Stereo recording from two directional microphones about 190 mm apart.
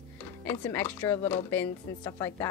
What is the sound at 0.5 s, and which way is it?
Speech, 10° left (ahead or behind).